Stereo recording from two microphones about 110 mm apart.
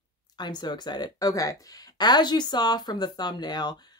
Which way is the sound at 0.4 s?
40° left (ahead or behind).